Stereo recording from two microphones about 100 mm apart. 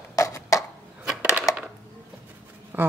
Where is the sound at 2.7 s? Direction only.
20° right (ahead or behind).